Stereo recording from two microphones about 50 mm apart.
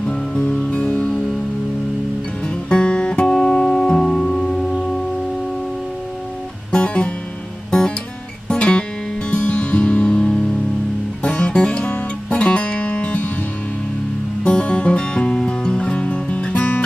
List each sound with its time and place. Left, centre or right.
0.0 s music: centre
2.4 s music: centre
6.7 s music: left
8.5 s music: left
14.4 s music: left